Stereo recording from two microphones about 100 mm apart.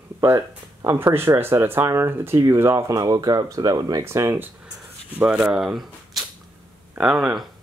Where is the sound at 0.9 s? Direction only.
25° right (ahead or behind).